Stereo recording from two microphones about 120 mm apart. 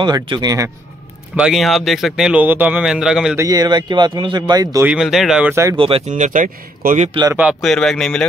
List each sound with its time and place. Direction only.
0.0 s speech: 35° right (ahead or behind)
1.5 s speech: centre (ahead or behind)
3.3 s speech: 30° right (ahead or behind)
4.8 s speech: 5° right (ahead or behind)
5.5 s speech: 25° right (ahead or behind)
5.8 s speech: 50° right (ahead or behind)
6.0 s speech: 90° right
7.6 s speech: 5° left (ahead or behind)